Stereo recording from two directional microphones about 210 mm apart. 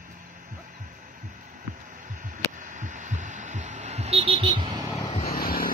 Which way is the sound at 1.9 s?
40° right (ahead or behind).